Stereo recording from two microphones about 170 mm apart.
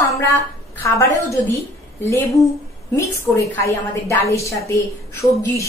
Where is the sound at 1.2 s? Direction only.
15° left (ahead or behind).